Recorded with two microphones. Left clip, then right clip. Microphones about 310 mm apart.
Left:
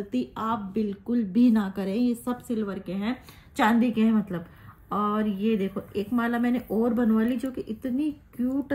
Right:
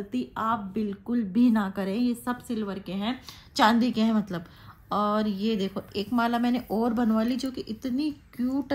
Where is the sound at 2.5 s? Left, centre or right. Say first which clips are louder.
Left 2 dB; right.